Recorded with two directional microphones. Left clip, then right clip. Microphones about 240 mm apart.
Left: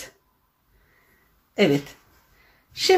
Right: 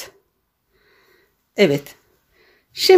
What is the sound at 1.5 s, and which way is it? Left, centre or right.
Speech, right.